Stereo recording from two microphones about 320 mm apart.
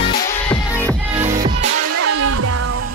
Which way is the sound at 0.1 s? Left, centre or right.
Left.